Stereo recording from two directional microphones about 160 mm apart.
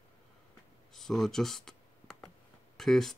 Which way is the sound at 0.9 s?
Centre (ahead or behind).